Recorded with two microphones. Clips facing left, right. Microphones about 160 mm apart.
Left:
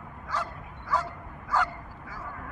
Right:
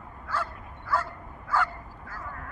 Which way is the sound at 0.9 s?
15° left (ahead or behind).